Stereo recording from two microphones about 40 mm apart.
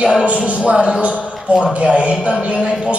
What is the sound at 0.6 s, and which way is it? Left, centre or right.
A man's voice, right.